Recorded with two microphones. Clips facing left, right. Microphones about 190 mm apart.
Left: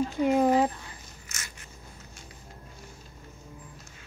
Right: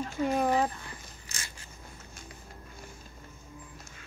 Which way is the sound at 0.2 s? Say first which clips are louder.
Left 4 dB; 20° left (ahead or behind).